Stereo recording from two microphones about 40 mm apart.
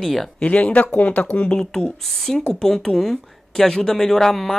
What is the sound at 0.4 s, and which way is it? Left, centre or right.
Speech, left.